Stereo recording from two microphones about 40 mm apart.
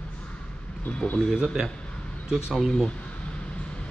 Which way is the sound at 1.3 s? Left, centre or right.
Centre.